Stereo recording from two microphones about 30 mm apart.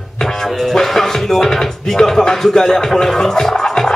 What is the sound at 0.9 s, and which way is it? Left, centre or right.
Music, centre.